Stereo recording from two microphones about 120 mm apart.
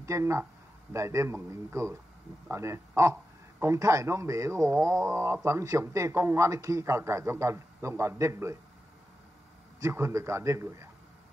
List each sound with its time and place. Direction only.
0.0 s speech: 25° right (ahead or behind)
9.8 s speech: 25° right (ahead or behind)